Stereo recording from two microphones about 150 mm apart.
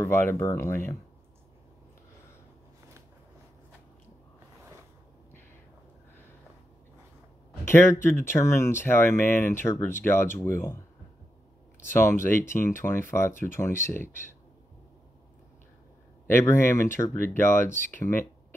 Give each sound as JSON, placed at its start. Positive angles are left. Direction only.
{"t": 0.0, "sound": "speech", "side_deg": 15}
{"t": 7.6, "sound": "speech", "side_deg": 15}
{"t": 11.9, "sound": "speech", "side_deg": 15}
{"t": 16.3, "sound": "speech", "side_deg": 15}